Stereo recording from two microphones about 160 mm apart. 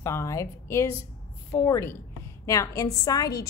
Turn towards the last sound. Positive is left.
turn(degrees=25)  # may be behind; listen again after turning